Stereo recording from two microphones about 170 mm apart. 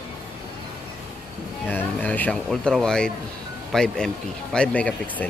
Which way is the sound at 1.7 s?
10° left (ahead or behind).